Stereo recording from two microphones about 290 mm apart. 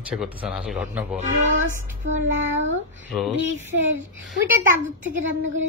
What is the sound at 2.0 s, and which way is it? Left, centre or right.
Speech, right.